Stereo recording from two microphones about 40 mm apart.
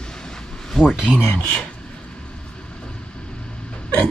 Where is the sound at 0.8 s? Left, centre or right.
Centre.